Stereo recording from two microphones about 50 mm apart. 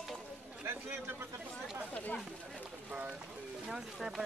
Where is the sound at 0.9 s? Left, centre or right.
Right.